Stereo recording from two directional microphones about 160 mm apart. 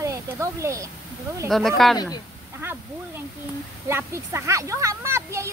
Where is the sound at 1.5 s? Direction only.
Centre (ahead or behind).